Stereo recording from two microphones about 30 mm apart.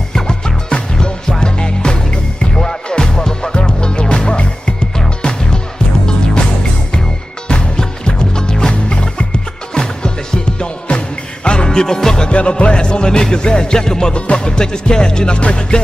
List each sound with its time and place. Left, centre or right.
0.1 s music: left
3.5 s music: left
7.4 s music: left
11.7 s music: left
12.3 s music: left
14.1 s music: left